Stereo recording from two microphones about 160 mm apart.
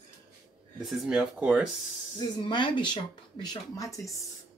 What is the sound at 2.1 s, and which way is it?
Speech, 30° left (ahead or behind).